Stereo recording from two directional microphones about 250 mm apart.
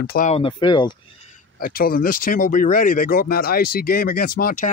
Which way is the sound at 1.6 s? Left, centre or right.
Left.